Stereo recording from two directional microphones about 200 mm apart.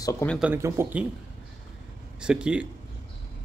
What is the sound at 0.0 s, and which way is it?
Speech, 15° left (ahead or behind).